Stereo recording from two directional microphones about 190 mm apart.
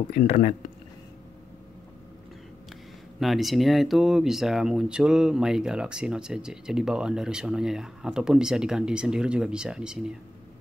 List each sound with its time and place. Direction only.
0.1 s speech: 40° left (ahead or behind)
3.2 s speech: centre (ahead or behind)